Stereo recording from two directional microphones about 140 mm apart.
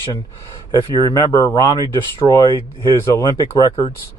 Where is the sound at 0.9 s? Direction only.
30° left (ahead or behind).